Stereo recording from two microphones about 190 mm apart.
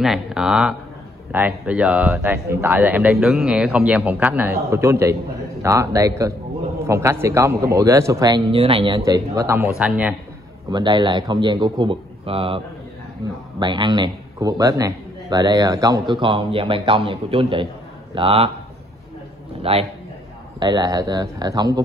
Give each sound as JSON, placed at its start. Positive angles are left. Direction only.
{"t": 0.0, "sound": "speech", "side_deg": 0}
{"t": 10.7, "sound": "a man's voice", "side_deg": -25}
{"t": 19.6, "sound": "a man's voice", "side_deg": -30}